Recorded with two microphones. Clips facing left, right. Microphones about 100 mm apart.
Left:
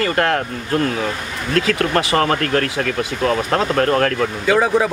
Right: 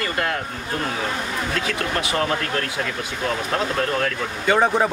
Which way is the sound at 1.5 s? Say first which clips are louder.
Left 10 dB; 80° left.